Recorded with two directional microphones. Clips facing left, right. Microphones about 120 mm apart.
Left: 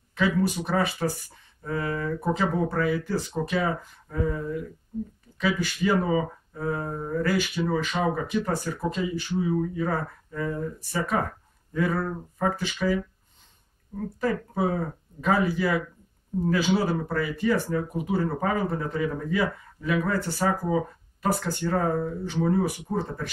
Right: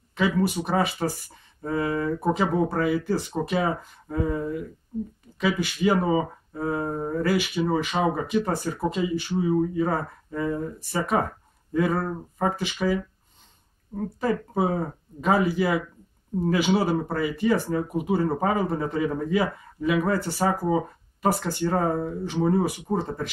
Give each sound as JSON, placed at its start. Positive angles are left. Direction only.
{"t": 0.7, "sound": "speech", "side_deg": -20}
{"t": 7.0, "sound": "a sound", "side_deg": -30}
{"t": 7.2, "sound": "speech", "side_deg": -20}